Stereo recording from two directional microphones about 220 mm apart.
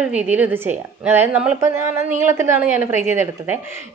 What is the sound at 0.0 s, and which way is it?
A woman's voice, 5° right (ahead or behind).